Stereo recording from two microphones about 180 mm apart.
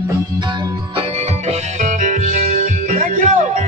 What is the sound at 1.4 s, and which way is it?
Music, 45° right (ahead or behind).